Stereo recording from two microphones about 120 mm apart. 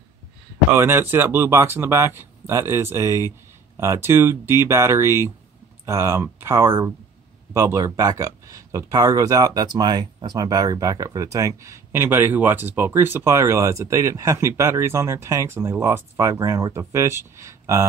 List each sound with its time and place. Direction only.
0.7 s speech: 20° right (ahead or behind)